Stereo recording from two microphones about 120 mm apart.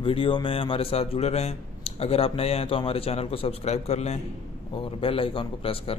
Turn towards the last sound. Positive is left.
turn(degrees=50)  # may be behind; listen again after turning